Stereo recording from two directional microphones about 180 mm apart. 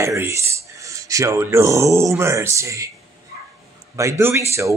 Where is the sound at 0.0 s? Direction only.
15° right (ahead or behind).